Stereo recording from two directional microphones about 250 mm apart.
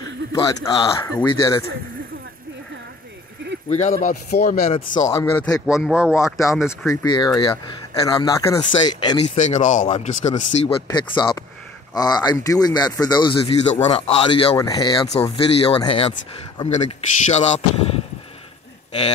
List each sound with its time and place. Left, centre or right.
0.3 s speech: centre
4.0 s speech: left
4.6 s speech: left
5.0 s speech: centre
5.8 s speech: centre
6.9 s speech: centre